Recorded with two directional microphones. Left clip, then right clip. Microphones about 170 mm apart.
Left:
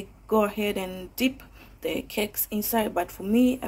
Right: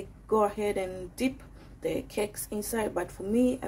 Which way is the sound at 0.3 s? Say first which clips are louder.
Left 2 dB; 20° left (ahead or behind).